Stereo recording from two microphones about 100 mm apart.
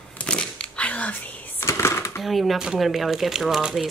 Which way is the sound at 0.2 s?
10° left (ahead or behind).